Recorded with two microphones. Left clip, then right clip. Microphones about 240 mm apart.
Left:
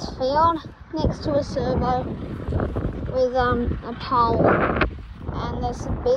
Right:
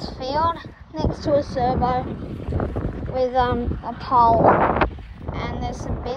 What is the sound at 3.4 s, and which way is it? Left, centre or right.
Speech, centre.